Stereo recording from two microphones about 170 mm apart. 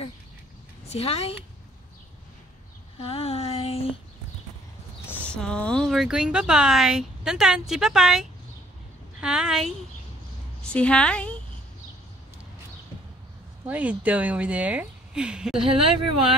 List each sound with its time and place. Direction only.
0.8 s a woman's voice: 35° left (ahead or behind)
3.0 s a sound: 35° left (ahead or behind)
5.0 s a woman's voice: 10° left (ahead or behind)
13.7 s speech: 10° right (ahead or behind)